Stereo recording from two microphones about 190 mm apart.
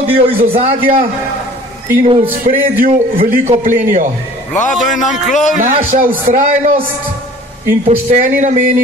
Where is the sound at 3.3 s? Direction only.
40° right (ahead or behind).